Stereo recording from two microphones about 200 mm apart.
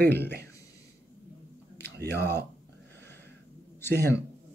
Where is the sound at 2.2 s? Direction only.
10° left (ahead or behind).